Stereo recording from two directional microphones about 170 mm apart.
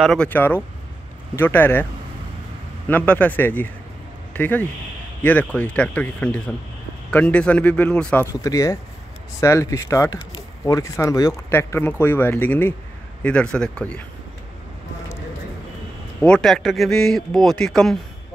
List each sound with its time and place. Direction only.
0.0 s speech: 5° left (ahead or behind)
2.9 s speech: 10° left (ahead or behind)
8.3 s speech: 20° left (ahead or behind)
16.2 s a man's voice: 5° left (ahead or behind)